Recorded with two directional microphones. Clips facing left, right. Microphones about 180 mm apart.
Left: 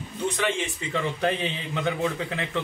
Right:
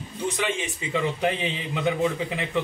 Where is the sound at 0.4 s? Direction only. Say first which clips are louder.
Left 1 dB; 15° right (ahead or behind).